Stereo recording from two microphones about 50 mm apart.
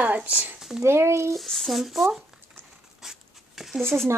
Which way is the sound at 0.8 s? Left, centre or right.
Right.